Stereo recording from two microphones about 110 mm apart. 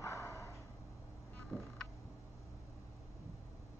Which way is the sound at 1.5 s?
15° left (ahead or behind).